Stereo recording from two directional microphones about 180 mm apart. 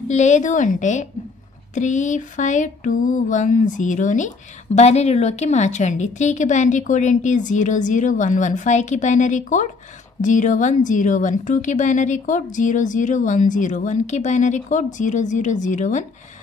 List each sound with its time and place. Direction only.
0.1 s speech: 40° left (ahead or behind)